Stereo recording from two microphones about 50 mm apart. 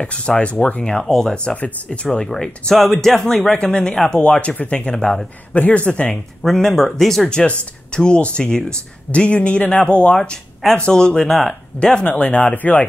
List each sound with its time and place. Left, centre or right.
0.0 s speech: left
1.0 s speech: centre
4.1 s speech: left
4.9 s speech: centre
5.5 s speech: left
6.4 s speech: centre
7.2 s speech: centre